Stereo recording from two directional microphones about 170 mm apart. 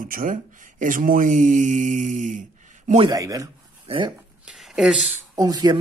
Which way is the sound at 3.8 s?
30° right (ahead or behind).